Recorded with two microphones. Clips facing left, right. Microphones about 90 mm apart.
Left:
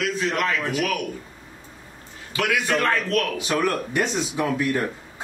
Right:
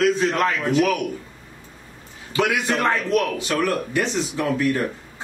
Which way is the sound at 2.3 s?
20° right (ahead or behind).